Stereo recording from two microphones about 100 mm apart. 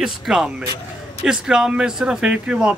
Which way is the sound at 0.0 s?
5° right (ahead or behind).